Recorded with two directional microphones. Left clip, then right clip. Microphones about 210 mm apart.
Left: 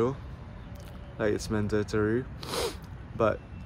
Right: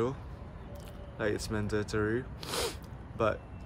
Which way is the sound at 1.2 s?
10° right (ahead or behind).